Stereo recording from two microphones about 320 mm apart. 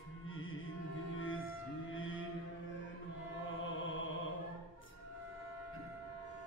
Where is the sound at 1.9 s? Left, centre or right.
Left.